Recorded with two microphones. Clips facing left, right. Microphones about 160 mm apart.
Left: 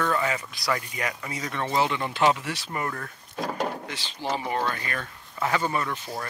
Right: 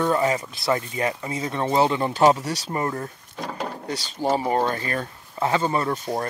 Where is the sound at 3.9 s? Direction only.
45° right (ahead or behind).